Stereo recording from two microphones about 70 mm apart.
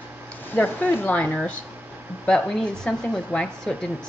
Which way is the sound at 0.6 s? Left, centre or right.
Left.